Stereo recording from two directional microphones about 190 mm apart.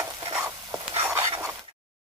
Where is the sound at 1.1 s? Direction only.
15° right (ahead or behind).